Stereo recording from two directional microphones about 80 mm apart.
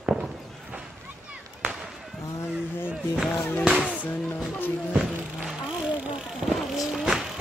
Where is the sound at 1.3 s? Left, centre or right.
Centre.